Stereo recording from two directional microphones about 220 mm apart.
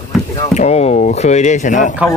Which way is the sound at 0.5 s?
30° left (ahead or behind).